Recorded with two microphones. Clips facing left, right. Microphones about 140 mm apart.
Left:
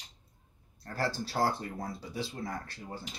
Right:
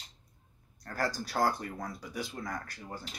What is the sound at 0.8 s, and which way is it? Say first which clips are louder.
Speech: even; 30° left (ahead or behind).